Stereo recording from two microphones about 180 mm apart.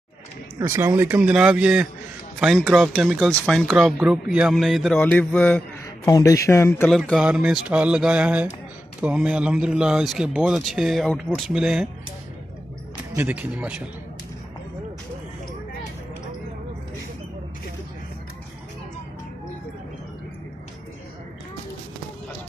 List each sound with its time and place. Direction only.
0.6 s speech: 15° right (ahead or behind); by 5.6 s 5° left (ahead or behind)
6.0 s speech: 20° left (ahead or behind)
7.0 s speech: 5° right (ahead or behind)
13.1 s speech: 10° right (ahead or behind)